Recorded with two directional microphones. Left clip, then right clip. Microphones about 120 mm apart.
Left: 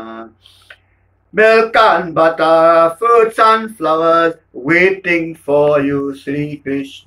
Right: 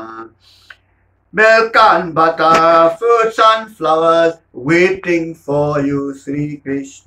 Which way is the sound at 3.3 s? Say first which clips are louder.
Even; 10° right (ahead or behind).